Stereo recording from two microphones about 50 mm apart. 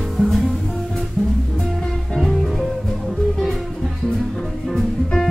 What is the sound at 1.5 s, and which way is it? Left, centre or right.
Music, centre.